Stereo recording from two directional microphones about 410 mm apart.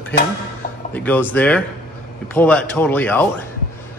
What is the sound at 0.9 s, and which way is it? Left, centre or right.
Speech, centre.